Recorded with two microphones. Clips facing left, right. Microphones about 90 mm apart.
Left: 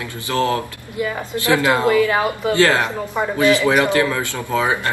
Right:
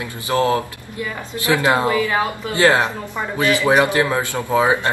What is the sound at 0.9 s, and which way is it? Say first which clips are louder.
Speech: left 4 dB; 10° left (ahead or behind).